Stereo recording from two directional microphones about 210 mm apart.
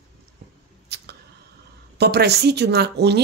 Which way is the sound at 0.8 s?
50° right (ahead or behind).